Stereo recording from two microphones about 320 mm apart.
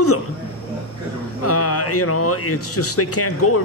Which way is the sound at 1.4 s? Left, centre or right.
Left.